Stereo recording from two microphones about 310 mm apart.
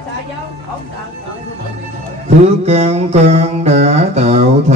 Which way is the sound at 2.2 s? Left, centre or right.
Right.